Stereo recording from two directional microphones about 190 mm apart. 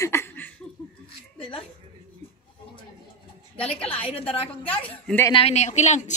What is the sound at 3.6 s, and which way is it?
Speech, 5° left (ahead or behind).